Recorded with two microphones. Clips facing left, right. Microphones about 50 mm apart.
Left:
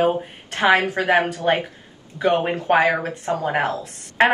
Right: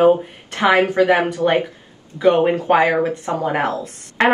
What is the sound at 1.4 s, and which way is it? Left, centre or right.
Speech, centre.